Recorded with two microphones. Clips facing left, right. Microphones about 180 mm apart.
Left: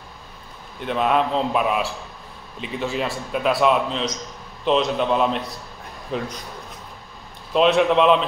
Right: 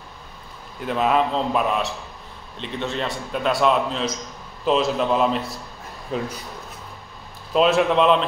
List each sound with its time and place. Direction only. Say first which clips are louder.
0.7 s a man's voice: even; centre (ahead or behind)
7.5 s a man's voice: left 1 dB; centre (ahead or behind)